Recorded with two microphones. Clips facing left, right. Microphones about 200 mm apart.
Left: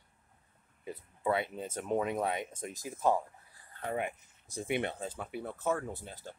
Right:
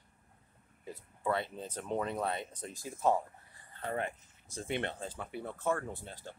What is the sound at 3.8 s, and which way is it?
Speech, 10° left (ahead or behind).